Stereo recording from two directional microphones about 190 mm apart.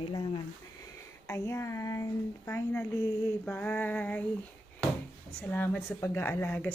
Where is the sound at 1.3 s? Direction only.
15° left (ahead or behind).